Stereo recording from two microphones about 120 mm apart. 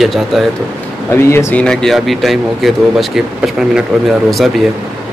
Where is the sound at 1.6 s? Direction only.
5° left (ahead or behind).